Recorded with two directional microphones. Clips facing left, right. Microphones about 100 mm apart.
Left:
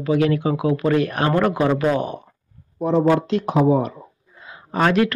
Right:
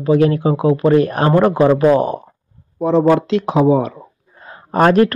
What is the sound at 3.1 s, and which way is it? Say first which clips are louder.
Speech: right 4 dB; 90° right.